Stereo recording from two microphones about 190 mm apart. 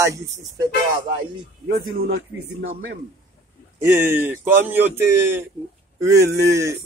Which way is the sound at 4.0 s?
10° right (ahead or behind).